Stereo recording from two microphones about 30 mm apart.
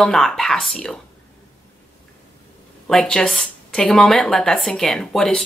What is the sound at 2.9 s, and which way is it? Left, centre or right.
Speech, centre.